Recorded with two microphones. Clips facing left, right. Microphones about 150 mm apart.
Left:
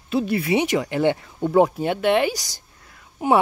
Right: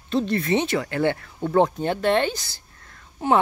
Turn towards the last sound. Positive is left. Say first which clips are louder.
# left 2 dB
turn(degrees=15)  # may be behind; listen again after turning